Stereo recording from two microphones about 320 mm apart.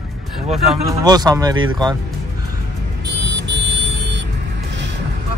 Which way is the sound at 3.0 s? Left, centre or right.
Right.